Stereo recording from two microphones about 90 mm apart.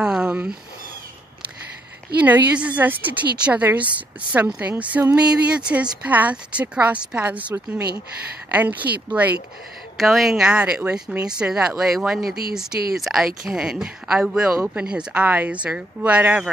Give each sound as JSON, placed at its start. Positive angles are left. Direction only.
{"t": 0.0, "sound": "a sound", "side_deg": -10}
{"t": 2.2, "sound": "speech", "side_deg": -15}
{"t": 9.9, "sound": "speech", "side_deg": -5}